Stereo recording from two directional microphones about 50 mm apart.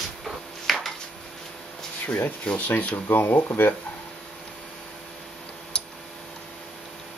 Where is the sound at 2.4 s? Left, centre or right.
Left.